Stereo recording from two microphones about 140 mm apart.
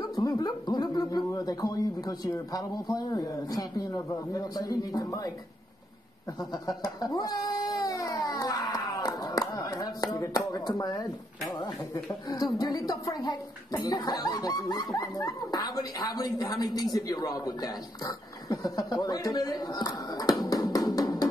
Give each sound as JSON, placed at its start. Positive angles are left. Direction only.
{"t": 0.0, "sound": "speech", "side_deg": 30}
{"t": 6.5, "sound": "a sound", "side_deg": 25}
{"t": 10.1, "sound": "a woman's voice", "side_deg": 25}